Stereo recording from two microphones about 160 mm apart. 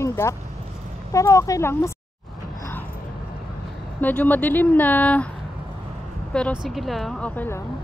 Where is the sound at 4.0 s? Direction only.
10° left (ahead or behind).